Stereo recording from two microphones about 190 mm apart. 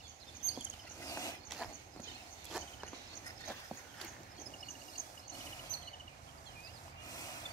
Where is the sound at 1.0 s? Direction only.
15° left (ahead or behind).